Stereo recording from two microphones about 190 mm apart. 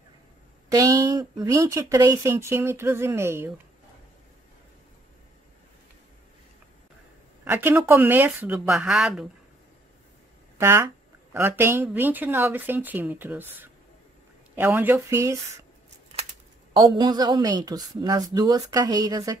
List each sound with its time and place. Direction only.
0.7 s speech: 20° right (ahead or behind)
7.4 s speech: 10° right (ahead or behind)
10.6 s speech: 15° right (ahead or behind)
16.7 s a woman's voice: 20° right (ahead or behind)